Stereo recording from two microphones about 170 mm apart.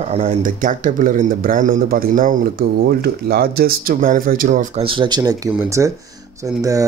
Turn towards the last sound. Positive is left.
turn(degrees=-20)  # may be behind; listen again after turning